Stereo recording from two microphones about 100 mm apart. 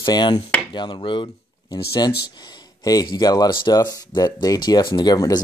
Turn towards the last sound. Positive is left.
turn(degrees=45)  # may be behind; listen again after turning